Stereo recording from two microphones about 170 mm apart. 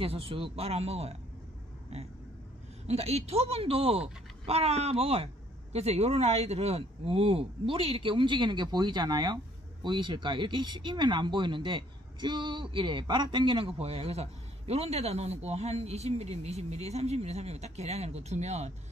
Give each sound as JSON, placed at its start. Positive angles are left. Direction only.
{"t": 0.0, "sound": "speech", "side_deg": -35}
{"t": 2.9, "sound": "speech", "side_deg": -40}